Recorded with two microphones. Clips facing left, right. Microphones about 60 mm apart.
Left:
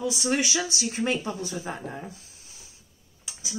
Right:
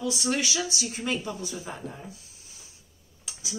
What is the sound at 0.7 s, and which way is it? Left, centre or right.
Speech, left.